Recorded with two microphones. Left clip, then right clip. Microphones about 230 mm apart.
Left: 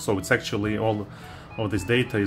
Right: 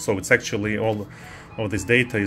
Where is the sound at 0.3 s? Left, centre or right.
Centre.